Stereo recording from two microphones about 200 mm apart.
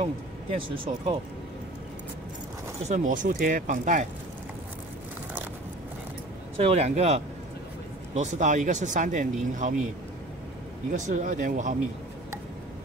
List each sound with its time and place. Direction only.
0.0 s speech: 30° right (ahead or behind)
2.9 s speech: 40° right (ahead or behind)
6.6 s speech: 30° right (ahead or behind)
10.9 s speech: 40° right (ahead or behind)